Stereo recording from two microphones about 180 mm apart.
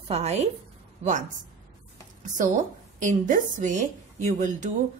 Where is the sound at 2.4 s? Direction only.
45° right (ahead or behind).